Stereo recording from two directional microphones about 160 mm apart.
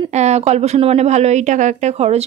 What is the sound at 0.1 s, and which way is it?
A woman's voice, 45° right (ahead or behind).